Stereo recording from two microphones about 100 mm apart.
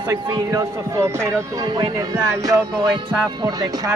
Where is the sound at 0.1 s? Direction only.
35° right (ahead or behind).